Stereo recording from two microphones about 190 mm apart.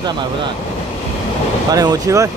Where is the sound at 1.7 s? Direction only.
20° right (ahead or behind).